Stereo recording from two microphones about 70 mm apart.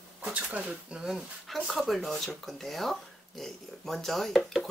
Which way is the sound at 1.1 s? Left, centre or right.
Centre.